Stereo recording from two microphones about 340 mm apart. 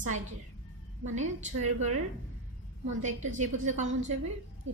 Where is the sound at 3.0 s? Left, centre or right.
Right.